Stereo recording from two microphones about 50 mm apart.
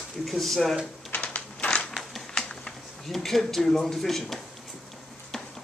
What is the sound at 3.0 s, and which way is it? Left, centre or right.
Speech, centre.